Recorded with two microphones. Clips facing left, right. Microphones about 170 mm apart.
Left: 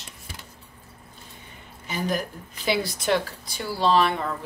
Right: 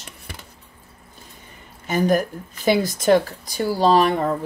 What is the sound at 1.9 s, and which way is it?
Speech, 50° right (ahead or behind).